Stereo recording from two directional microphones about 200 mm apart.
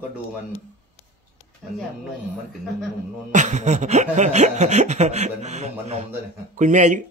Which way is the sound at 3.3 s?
35° right (ahead or behind).